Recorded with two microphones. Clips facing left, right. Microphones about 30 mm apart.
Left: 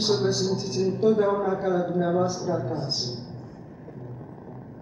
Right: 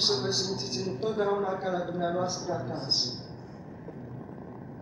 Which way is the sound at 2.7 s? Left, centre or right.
Centre.